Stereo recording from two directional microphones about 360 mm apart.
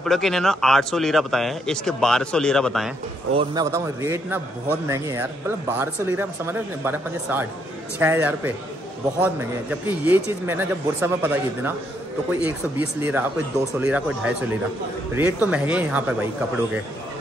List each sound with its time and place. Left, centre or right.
0.0 s speech: centre
3.3 s speech: centre